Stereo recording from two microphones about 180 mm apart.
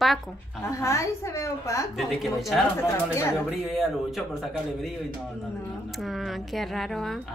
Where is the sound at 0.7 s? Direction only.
15° left (ahead or behind).